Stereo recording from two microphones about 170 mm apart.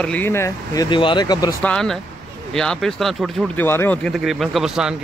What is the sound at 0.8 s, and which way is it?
Speech, 30° left (ahead or behind).